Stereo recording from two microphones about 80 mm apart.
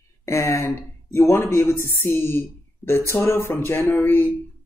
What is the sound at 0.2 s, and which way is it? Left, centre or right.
Speech, left.